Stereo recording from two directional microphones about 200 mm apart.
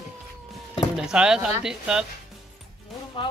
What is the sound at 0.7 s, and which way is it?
Speech, centre (ahead or behind).